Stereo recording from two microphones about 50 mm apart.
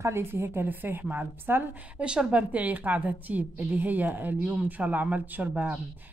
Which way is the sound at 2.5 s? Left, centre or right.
Right.